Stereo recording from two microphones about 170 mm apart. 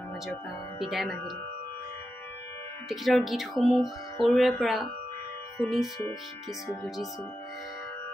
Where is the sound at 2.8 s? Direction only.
Centre (ahead or behind).